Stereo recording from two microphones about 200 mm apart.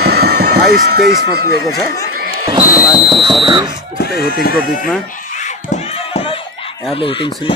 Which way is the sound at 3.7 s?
55° left (ahead or behind).